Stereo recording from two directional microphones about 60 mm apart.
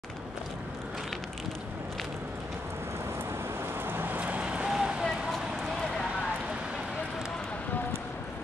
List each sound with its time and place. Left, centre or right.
3.8 s vehicle: right
4.2 s vehicle: right
5.0 s a sound: centre